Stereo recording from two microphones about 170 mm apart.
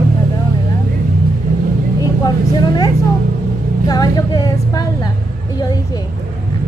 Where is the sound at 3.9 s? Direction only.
20° left (ahead or behind).